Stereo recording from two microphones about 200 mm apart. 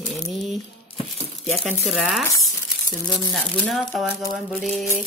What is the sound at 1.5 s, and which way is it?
Speech, centre (ahead or behind).